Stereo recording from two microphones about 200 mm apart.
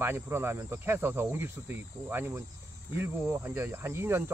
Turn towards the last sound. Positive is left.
turn(degrees=-10)  # may be behind; listen again after turning